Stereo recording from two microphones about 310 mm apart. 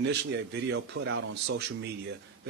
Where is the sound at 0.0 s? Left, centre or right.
Right.